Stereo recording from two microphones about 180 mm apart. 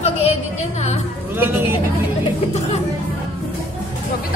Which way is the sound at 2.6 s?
35° left (ahead or behind).